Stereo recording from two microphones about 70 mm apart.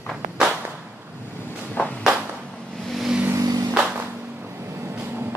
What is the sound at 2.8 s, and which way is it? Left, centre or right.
Vehicle, centre.